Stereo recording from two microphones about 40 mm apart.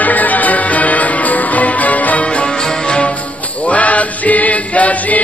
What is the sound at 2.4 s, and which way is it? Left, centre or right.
Music, centre.